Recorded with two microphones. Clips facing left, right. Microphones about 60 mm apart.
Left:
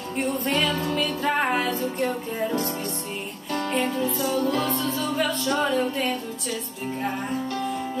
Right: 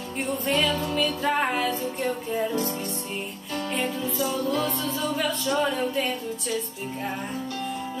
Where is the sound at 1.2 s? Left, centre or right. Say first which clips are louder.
Left 3 dB; centre.